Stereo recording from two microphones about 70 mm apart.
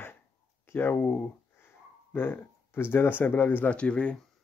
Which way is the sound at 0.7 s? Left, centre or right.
Left.